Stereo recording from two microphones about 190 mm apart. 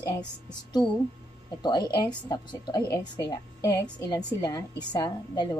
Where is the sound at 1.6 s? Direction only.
20° left (ahead or behind).